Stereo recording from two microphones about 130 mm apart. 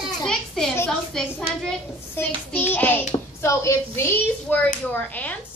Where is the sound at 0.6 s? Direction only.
5° left (ahead or behind).